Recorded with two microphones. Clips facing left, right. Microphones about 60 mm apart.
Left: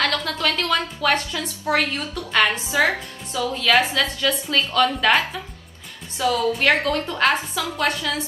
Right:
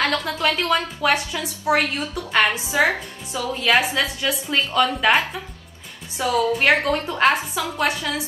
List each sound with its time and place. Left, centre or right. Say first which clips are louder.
0.0 s a woman's voice: right 1 dB; centre
4.0 s a woman's voice: left 1 dB; centre